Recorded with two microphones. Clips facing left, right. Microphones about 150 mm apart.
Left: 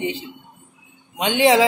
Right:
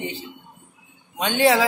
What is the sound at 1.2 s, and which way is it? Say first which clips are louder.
Speech: left 3 dB; 15° left (ahead or behind).